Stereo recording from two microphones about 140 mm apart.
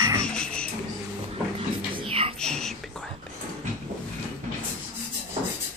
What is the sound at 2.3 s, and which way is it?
Whispering, 5° left (ahead or behind).